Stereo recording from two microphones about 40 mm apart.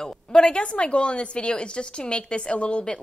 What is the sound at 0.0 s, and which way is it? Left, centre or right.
Speech, left.